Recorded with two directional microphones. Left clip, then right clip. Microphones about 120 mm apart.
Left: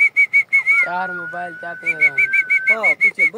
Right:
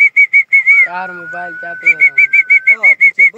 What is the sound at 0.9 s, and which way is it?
Speech, 70° right (ahead or behind).